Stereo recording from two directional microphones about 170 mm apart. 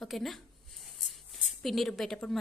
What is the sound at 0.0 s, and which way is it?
Speech, centre (ahead or behind).